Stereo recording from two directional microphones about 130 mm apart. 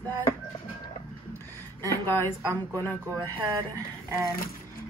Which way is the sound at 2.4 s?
25° right (ahead or behind).